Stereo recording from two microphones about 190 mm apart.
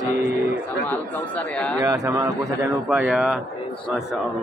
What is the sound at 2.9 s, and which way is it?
Speech, 5° right (ahead or behind).